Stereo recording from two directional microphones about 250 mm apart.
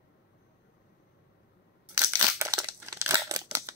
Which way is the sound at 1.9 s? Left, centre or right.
Centre.